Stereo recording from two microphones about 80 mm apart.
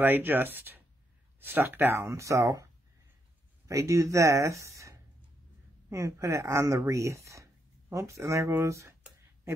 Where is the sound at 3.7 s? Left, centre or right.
Right.